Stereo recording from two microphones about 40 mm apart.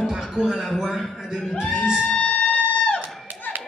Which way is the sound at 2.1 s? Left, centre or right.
Left.